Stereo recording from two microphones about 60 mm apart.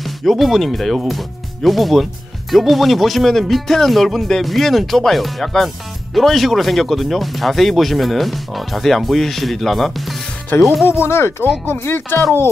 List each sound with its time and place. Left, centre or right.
0.0 s speech: centre
10.9 s speech: left